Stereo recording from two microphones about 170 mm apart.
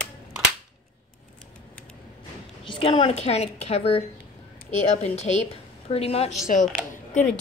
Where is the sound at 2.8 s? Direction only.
30° left (ahead or behind).